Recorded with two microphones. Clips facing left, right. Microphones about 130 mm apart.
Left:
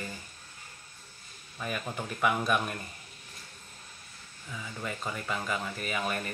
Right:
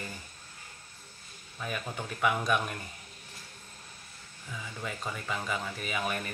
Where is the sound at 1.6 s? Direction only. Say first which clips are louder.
Left 1 dB; centre (ahead or behind).